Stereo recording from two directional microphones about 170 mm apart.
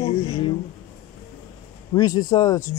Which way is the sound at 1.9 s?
20° left (ahead or behind).